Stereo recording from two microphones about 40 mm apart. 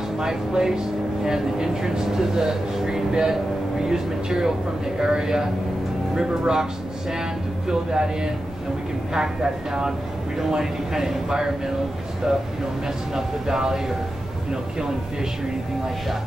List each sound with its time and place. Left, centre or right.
0.2 s speech: centre